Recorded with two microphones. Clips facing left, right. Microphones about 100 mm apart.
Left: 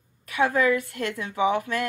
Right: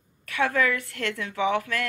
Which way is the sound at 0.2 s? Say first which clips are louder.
Left 2 dB; 20° left (ahead or behind).